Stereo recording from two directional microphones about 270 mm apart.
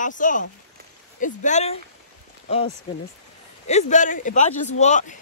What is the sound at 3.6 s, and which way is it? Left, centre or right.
Speech, left.